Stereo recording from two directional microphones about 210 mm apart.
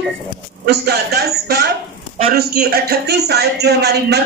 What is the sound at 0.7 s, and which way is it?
A man's voice, 50° right (ahead or behind).